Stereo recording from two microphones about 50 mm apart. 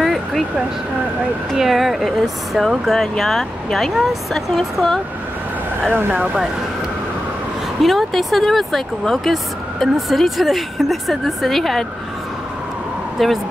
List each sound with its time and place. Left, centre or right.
0.0 s vehicle: centre
1.5 s speech: centre
5.9 s speech: right
7.8 s speech: centre
13.2 s speech: centre